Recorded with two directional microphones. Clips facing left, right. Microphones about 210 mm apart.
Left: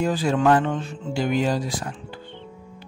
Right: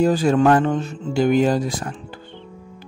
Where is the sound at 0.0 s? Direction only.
45° right (ahead or behind).